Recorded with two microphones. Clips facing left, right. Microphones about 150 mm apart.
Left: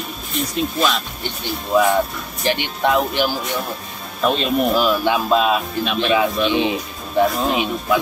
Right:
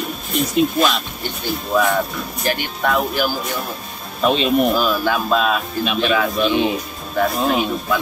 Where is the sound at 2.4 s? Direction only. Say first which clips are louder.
Left 2 dB; 25° left (ahead or behind).